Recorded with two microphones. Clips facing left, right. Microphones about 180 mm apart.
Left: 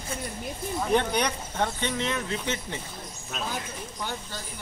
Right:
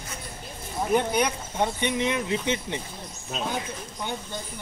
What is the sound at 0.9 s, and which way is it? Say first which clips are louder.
Speech: right 2 dB; 5° right (ahead or behind).